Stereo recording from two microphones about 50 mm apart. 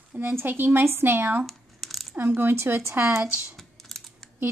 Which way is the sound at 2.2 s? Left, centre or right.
Right.